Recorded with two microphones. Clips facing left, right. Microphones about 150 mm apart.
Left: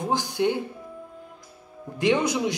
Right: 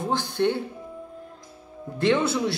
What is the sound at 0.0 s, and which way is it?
Speech, 15° left (ahead or behind).